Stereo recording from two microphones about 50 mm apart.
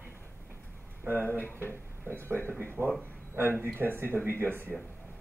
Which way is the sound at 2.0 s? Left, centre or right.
Right.